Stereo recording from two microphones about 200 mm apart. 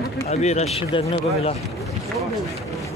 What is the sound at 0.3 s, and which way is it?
A man's voice, 35° left (ahead or behind).